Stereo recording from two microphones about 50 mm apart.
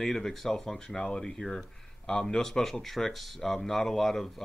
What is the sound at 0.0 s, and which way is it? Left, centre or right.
Speech, centre.